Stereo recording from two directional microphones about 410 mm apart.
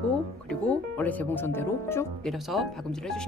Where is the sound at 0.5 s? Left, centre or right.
Centre.